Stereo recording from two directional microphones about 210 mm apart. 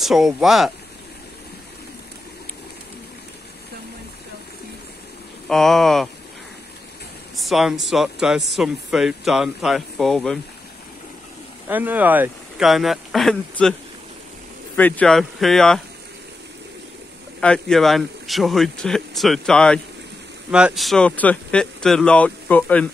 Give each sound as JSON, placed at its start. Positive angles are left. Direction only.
{"t": 0.0, "sound": "speech", "side_deg": 0}
{"t": 5.5, "sound": "speech", "side_deg": 0}
{"t": 7.3, "sound": "speech", "side_deg": 0}
{"t": 11.6, "sound": "speech", "side_deg": -10}
{"t": 14.8, "sound": "speech", "side_deg": 5}
{"t": 17.4, "sound": "speech", "side_deg": 5}